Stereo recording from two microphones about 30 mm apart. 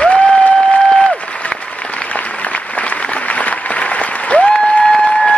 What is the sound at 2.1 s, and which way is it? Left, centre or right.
Applause, left.